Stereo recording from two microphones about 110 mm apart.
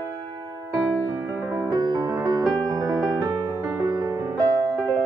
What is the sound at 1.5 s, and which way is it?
Music, 30° right (ahead or behind).